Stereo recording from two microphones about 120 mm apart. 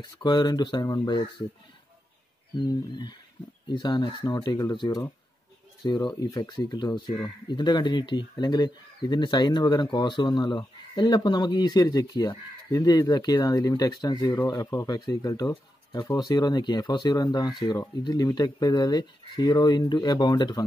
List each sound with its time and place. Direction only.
0.0 s speech: 35° left (ahead or behind)
2.5 s speech: 40° left (ahead or behind)